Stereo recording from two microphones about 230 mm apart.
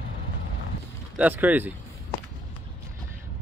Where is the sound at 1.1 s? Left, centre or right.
Centre.